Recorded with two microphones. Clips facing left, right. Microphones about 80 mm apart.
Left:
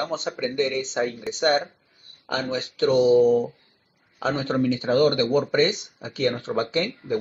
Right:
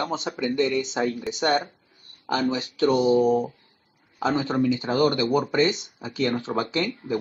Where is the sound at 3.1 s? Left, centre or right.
Right.